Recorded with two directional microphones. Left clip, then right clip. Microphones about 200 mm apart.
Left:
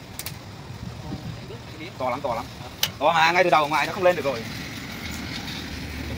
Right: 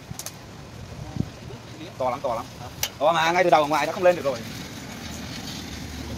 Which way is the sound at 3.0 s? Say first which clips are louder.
Left 1 dB; 50° right (ahead or behind).